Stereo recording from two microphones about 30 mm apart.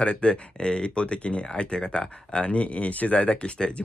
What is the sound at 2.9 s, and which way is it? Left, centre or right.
Speech, left.